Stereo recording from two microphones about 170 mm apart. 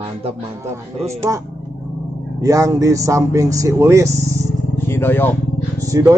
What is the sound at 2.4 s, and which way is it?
Speech, 20° right (ahead or behind).